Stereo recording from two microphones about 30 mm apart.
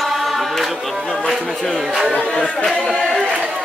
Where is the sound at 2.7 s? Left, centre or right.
Left.